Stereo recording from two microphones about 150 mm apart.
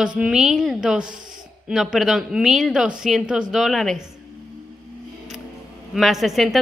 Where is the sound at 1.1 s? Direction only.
60° right (ahead or behind).